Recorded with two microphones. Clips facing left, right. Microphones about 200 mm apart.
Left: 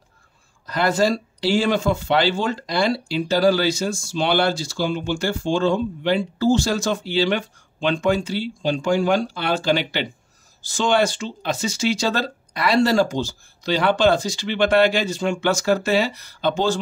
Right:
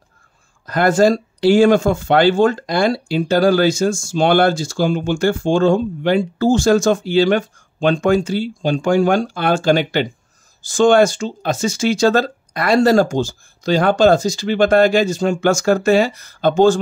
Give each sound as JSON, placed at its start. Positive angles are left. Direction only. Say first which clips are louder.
{"t": 0.7, "sound": "speech", "louder": "right 6 dB", "side_deg": -50}